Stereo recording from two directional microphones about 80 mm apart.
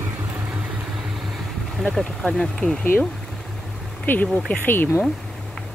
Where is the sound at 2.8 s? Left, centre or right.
Left.